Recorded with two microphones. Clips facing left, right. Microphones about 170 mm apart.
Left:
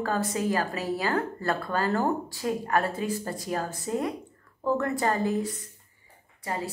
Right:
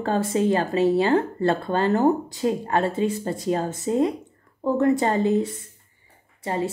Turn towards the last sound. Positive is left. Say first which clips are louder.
# right 7 dB
turn(degrees=-25)  # may be behind; listen again after turning